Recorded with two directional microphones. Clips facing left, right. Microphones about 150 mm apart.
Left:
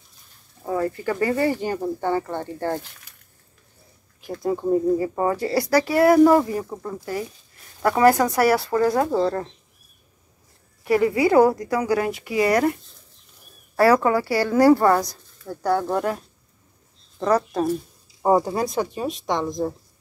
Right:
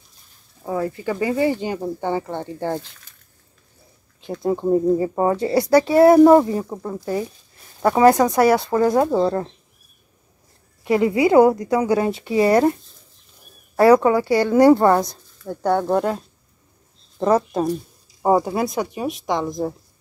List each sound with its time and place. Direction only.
0.7 s speech: 10° right (ahead or behind)
4.4 s speech: 20° right (ahead or behind)
10.8 s speech: 20° right (ahead or behind)
13.7 s speech: 20° right (ahead or behind)
18.2 s speech: 15° right (ahead or behind)